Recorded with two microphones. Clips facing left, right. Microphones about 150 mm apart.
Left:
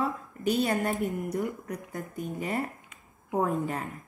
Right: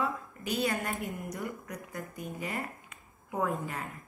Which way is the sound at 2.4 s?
45° left (ahead or behind).